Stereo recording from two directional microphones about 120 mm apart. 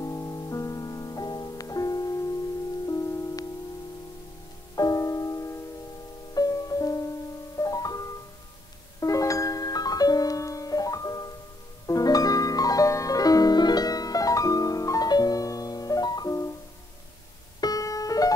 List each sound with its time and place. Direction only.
0.0 s music: 25° left (ahead or behind)
4.7 s music: 30° left (ahead or behind)
17.6 s music: 30° left (ahead or behind)